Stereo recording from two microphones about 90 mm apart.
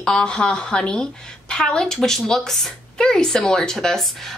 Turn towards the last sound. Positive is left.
turn(degrees=5)  # may be behind; listen again after turning